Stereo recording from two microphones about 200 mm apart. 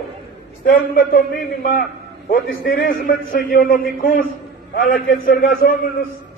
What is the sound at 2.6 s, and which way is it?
A man's voice, 45° left (ahead or behind).